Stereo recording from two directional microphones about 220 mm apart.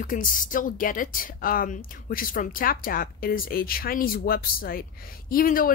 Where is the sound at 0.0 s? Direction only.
40° left (ahead or behind).